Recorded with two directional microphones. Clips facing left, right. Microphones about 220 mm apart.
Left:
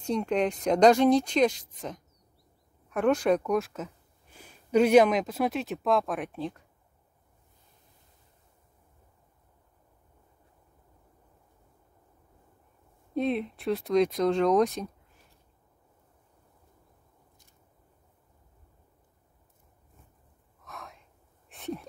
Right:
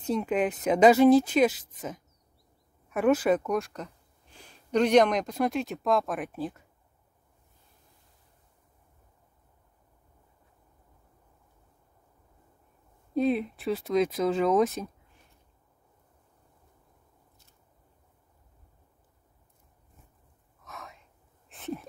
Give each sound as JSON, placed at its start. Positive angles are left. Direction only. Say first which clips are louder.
{"t": 0.0, "sound": "speech", "louder": "even", "side_deg": -5}
{"t": 13.1, "sound": "speech", "louder": "right 2 dB", "side_deg": 0}
{"t": 20.6, "sound": "gasp", "louder": "even", "side_deg": 0}
{"t": 21.5, "sound": "a sound", "louder": "even", "side_deg": 0}